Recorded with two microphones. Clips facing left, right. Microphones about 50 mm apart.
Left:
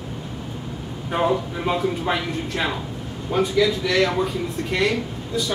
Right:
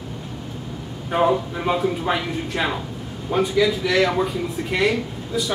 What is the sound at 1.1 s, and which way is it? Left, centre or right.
A man's voice, centre.